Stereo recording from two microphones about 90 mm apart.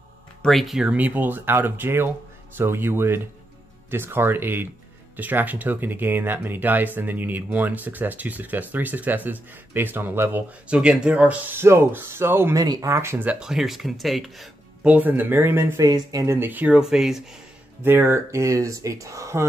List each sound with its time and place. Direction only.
0.4 s speech: centre (ahead or behind)
0.8 s speech: 20° right (ahead or behind)
10.7 s speech: 10° right (ahead or behind)
12.5 s speech: 45° right (ahead or behind)
12.9 s speech: 30° right (ahead or behind)
13.2 s speech: 15° right (ahead or behind)
13.5 s speech: 5° right (ahead or behind)
14.8 s speech: 15° right (ahead or behind)
15.8 s speech: 40° right (ahead or behind); by 17.2 s 5° right (ahead or behind)
17.8 s speech: 25° right (ahead or behind)
18.3 s speech: 35° right (ahead or behind)